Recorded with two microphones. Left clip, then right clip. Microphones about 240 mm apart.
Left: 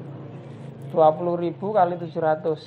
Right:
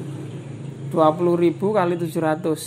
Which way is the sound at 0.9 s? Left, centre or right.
Right.